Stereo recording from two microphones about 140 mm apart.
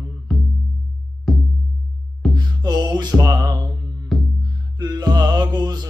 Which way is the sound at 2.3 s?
30° right (ahead or behind).